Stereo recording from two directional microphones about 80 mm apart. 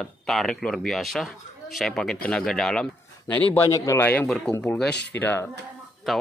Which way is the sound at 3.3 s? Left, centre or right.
Left.